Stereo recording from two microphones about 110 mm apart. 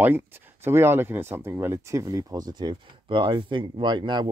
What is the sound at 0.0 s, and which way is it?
Speech, 20° right (ahead or behind).